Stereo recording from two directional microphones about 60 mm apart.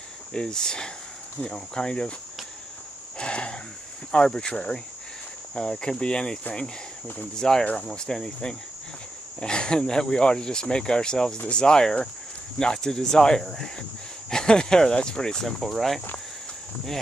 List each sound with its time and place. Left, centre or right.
0.3 s speech: centre
3.2 s a sound: centre
4.1 s speech: centre